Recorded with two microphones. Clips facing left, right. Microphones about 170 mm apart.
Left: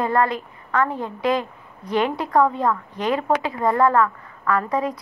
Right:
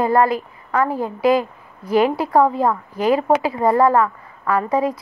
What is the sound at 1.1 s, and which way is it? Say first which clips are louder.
Speech: right 6 dB; 5° right (ahead or behind).